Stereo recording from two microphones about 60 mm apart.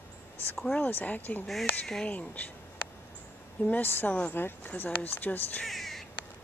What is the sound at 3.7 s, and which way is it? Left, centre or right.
A woman's voice, left.